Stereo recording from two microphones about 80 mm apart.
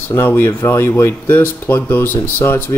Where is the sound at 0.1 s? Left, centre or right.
Left.